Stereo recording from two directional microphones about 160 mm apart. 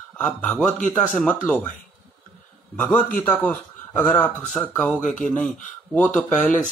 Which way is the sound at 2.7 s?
10° left (ahead or behind).